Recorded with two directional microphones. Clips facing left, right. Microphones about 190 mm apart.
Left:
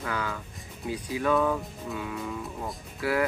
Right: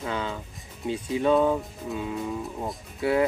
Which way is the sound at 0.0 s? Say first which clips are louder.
Right 2 dB; 25° right (ahead or behind).